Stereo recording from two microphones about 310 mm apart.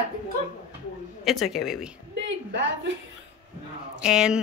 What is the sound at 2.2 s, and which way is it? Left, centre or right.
Speech, right.